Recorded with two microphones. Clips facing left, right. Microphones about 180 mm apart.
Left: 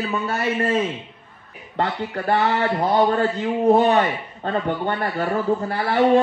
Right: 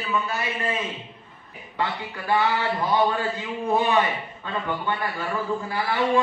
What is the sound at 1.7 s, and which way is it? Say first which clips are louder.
A man's voice: left 5 dB; 55° left (ahead or behind).